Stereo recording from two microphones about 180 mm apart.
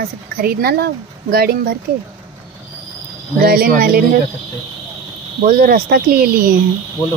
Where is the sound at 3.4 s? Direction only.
55° right (ahead or behind).